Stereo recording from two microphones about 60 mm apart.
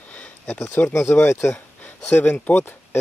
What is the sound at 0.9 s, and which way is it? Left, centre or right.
Speech, left.